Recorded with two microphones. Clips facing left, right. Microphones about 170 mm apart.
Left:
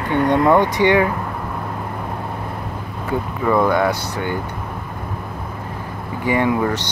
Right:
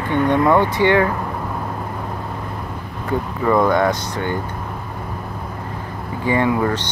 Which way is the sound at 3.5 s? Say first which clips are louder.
Right 1 dB; 5° left (ahead or behind).